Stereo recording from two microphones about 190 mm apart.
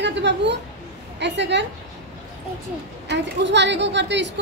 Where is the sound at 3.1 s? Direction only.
65° right (ahead or behind).